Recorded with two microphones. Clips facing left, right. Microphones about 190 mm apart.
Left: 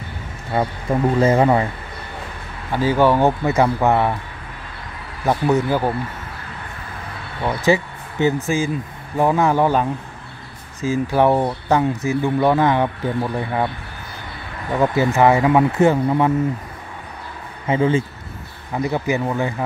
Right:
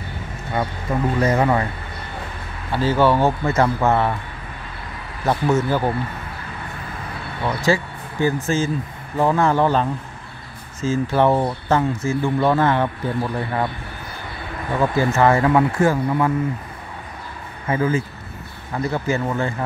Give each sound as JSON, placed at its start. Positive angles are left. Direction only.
{"t": 1.2, "sound": "speech", "side_deg": 25}
{"t": 2.7, "sound": "speech", "side_deg": 15}
{"t": 5.2, "sound": "speech", "side_deg": 15}
{"t": 7.4, "sound": "speech", "side_deg": 20}
{"t": 14.8, "sound": "speech", "side_deg": 15}
{"t": 17.6, "sound": "speech", "side_deg": 25}